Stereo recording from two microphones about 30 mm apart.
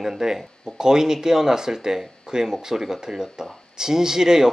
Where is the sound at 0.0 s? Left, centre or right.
Centre.